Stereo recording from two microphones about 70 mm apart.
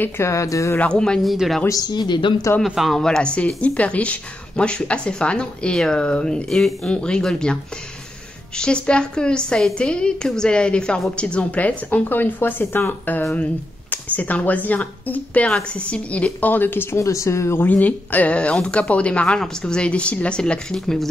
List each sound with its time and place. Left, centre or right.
0.0 s speech: left
0.7 s a woman's voice: centre
1.2 s speech: centre
1.7 s speech: left
2.6 s speech: centre
3.0 s a woman's voice: centre
8.5 s a woman's voice: centre; by 17.0 s left
17.0 s speech: left
17.6 s a woman's voice: left; by 21.1 s centre